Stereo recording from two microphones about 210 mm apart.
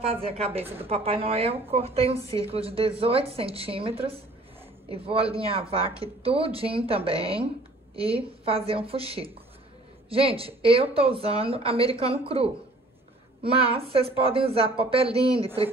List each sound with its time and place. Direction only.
0.0 s a woman's voice: 25° right (ahead or behind)